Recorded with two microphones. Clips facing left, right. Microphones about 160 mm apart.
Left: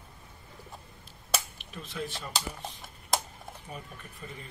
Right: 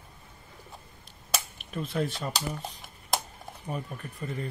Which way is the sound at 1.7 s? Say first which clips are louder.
Right 7 dB; 55° right (ahead or behind).